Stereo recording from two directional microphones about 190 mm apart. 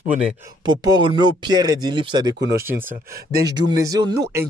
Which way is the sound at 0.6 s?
20° right (ahead or behind).